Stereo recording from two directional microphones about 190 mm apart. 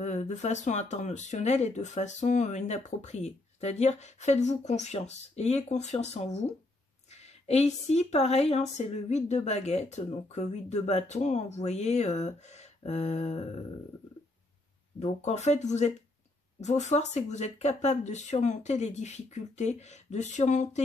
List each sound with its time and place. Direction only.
0.0 s speech: 35° left (ahead or behind)
15.0 s speech: 35° left (ahead or behind)